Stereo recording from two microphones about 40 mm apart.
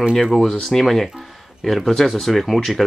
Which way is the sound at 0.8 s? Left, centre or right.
Centre.